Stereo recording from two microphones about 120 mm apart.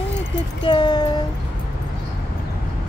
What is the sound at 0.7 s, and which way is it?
Speech, 40° left (ahead or behind).